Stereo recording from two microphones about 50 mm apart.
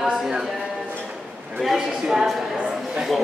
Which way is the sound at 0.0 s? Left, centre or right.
Centre.